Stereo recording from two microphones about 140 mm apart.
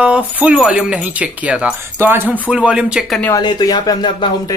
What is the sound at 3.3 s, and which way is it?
Speech, 30° left (ahead or behind).